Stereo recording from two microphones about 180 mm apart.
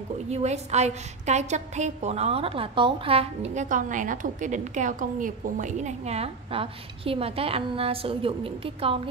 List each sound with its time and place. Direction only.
0.3 s a woman's voice: 40° right (ahead or behind)